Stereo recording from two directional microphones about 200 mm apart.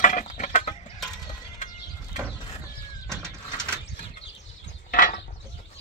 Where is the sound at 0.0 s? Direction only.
35° left (ahead or behind).